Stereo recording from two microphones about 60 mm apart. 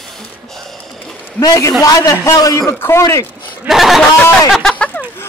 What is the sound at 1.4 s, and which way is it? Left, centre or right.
Speech, left.